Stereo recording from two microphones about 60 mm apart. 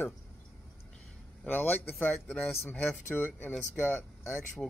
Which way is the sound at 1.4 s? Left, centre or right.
Left.